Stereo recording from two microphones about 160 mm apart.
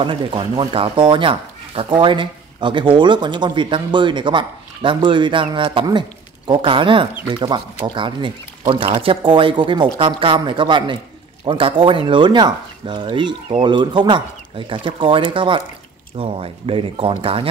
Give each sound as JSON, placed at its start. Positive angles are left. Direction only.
{"t": 0.0, "sound": "speech", "side_deg": -30}